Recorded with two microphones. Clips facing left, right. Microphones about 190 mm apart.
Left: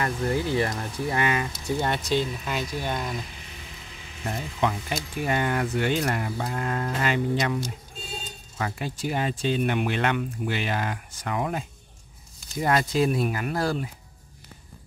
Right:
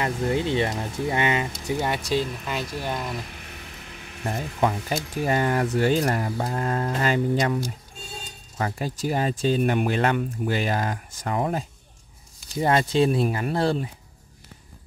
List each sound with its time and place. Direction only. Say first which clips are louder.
0.0 s speech: right 2 dB; 20° right (ahead or behind)
1.8 s speech: even; 10° right (ahead or behind)
3.3 s a sound: right 2 dB; 60° right (ahead or behind)
5.1 s speech: right 3 dB; 40° right (ahead or behind)
8.5 s speech: right 3 dB; 40° right (ahead or behind)